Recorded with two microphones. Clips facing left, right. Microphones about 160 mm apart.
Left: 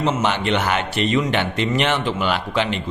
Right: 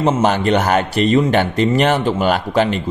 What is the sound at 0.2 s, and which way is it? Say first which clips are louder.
Speech: right 5 dB; 40° right (ahead or behind).